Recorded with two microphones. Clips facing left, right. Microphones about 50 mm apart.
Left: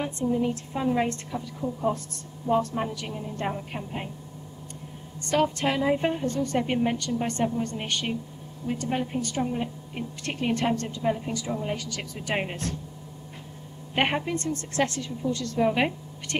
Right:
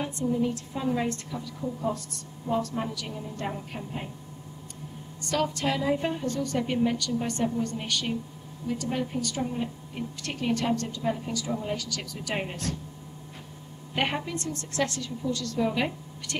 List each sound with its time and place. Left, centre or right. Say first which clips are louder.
0.0 s a woman's voice: left 1 dB; left
1.6 s a woman's voice: left 3 dB; centre
2.7 s a woman's voice: left 2 dB; left
5.2 s a woman's voice: left 3 dB; left
13.9 s a woman's voice: left 3 dB; left